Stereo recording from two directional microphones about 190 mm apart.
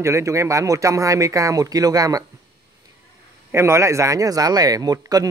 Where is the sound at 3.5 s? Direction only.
15° right (ahead or behind).